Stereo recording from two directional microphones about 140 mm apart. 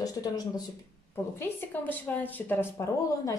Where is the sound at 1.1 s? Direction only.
15° left (ahead or behind).